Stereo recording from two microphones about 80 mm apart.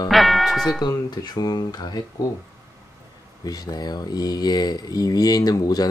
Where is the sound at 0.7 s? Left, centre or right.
Left.